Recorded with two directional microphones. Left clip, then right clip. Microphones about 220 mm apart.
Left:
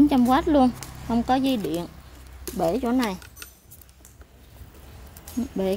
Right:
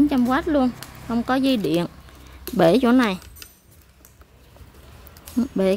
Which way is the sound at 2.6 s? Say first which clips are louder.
Right 8 dB; 25° right (ahead or behind).